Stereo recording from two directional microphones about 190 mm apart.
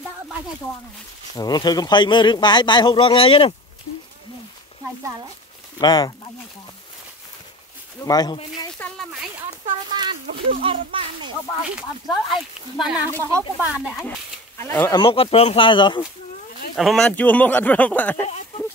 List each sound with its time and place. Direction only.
1.3 s a man's voice: 20° left (ahead or behind)
5.8 s a man's voice: 20° left (ahead or behind)
8.0 s a man's voice: 20° left (ahead or behind)
8.7 s speech: 5° left (ahead or behind)
9.8 s a child's voice: 25° right (ahead or behind)
11.6 s speech: centre (ahead or behind)
14.6 s a man's voice: 15° left (ahead or behind)
16.7 s speech: centre (ahead or behind)